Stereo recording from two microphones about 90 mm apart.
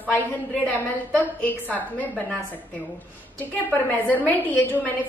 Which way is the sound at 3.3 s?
20° left (ahead or behind).